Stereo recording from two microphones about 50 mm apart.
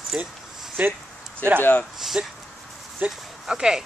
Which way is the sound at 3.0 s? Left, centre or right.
Right.